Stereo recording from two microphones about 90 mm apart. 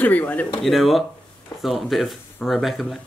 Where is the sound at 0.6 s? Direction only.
Centre (ahead or behind).